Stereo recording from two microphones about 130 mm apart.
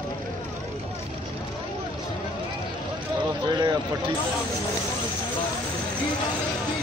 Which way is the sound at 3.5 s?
30° right (ahead or behind).